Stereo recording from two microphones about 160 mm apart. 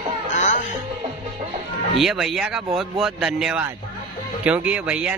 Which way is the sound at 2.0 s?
Centre (ahead or behind).